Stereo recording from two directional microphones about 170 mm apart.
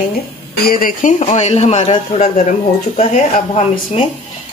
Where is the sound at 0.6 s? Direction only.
60° left (ahead or behind).